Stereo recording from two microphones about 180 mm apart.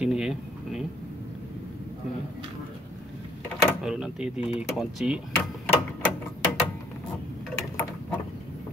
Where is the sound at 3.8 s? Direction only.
5° right (ahead or behind).